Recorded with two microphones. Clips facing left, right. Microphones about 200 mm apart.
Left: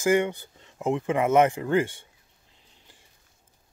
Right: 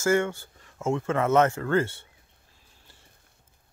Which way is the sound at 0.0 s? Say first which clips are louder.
Left 1 dB; 15° left (ahead or behind).